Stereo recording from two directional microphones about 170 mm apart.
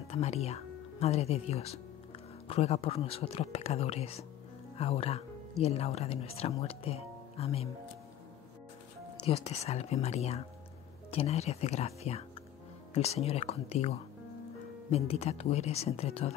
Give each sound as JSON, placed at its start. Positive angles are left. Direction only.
{"t": 0.1, "sound": "speech", "side_deg": 40}
{"t": 9.2, "sound": "speech", "side_deg": 40}